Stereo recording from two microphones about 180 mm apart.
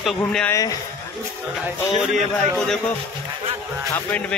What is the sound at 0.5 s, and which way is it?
Speech, 20° left (ahead or behind).